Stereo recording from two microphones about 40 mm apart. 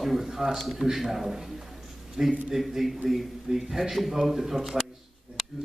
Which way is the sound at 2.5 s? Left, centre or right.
Centre.